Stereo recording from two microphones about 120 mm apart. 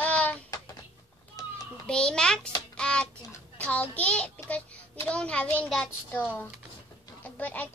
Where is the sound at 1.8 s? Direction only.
5° left (ahead or behind).